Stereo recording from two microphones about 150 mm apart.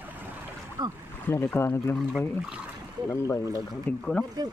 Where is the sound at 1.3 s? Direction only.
15° left (ahead or behind).